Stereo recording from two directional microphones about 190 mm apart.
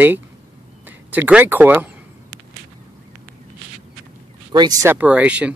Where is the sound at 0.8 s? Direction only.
10° right (ahead or behind).